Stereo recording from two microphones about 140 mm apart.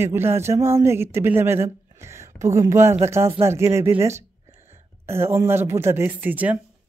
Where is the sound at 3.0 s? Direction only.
20° right (ahead or behind).